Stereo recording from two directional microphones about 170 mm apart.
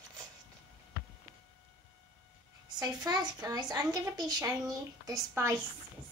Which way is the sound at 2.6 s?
25° right (ahead or behind).